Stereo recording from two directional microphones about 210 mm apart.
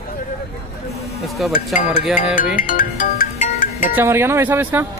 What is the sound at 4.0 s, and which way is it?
Speech, 10° right (ahead or behind).